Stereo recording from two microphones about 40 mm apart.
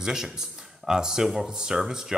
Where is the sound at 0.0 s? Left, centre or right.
Centre.